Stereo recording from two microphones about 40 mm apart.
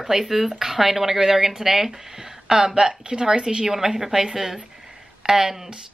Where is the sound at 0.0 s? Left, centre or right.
Centre.